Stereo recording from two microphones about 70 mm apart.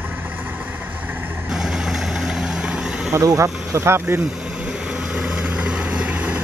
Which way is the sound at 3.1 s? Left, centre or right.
Right.